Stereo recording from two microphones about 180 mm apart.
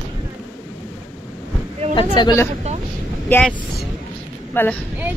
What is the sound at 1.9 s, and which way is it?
Speech, 25° left (ahead or behind).